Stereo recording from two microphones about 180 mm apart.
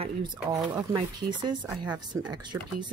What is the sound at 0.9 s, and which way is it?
Speech, 25° right (ahead or behind).